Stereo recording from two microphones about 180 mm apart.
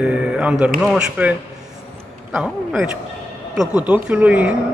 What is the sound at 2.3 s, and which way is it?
Speech, 5° right (ahead or behind).